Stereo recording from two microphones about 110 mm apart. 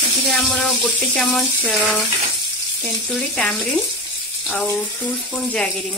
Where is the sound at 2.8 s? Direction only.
10° left (ahead or behind).